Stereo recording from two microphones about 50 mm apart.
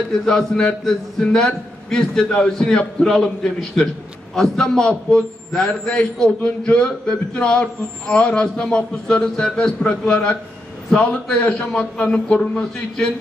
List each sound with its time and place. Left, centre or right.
0.1 s a man's voice: centre
11.4 s a man's voice: centre